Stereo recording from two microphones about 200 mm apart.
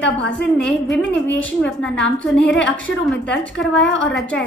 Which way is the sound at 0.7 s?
5° left (ahead or behind).